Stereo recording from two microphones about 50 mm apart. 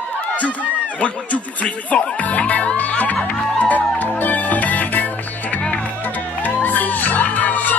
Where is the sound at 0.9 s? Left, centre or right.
Left.